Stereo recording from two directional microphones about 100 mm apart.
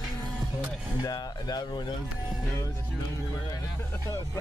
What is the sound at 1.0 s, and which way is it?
Speech, 40° left (ahead or behind).